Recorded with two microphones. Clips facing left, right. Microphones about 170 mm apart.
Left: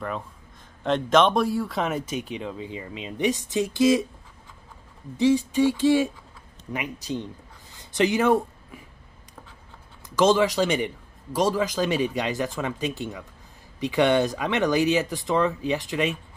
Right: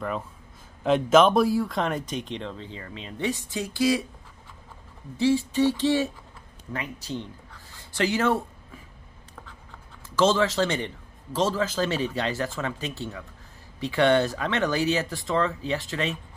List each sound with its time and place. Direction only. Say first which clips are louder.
0.8 s speech: right 2 dB; 5° right (ahead or behind); by 4.0 s 20° left (ahead or behind)
5.1 s speech: left 2 dB; 15° left (ahead or behind)
7.7 s a sound: left 3 dB; 20° left (ahead or behind)
10.0 s speech: left 2 dB; 15° left (ahead or behind)